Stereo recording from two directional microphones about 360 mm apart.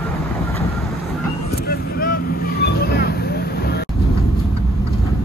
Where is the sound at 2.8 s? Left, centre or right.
Left.